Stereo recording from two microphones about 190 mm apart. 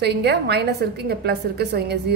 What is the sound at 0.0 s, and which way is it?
A woman's voice, 60° right (ahead or behind).